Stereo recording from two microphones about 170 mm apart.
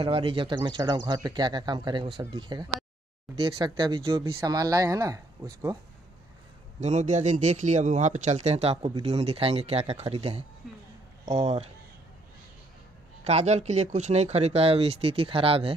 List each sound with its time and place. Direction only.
0.0 s speech: 30° right (ahead or behind)
6.8 s a man's voice: 45° right (ahead or behind)
13.2 s speech: 40° right (ahead or behind)